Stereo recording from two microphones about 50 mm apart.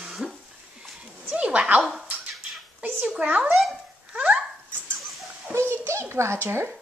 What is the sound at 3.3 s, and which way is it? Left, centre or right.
Speech, right.